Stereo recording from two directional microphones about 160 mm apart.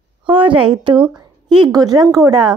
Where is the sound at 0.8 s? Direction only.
30° right (ahead or behind).